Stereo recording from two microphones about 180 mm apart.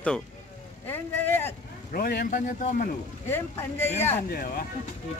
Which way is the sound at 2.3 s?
45° left (ahead or behind).